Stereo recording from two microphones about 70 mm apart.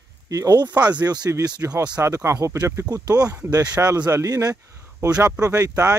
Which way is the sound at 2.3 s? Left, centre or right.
Right.